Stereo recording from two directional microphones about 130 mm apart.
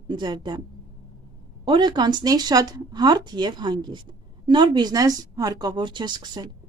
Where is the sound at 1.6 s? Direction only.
35° right (ahead or behind).